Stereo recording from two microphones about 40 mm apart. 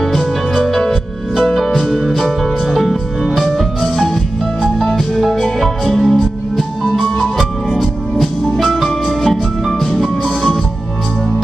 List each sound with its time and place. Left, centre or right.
0.0 s music: centre
1.5 s music: centre
7.7 s music: centre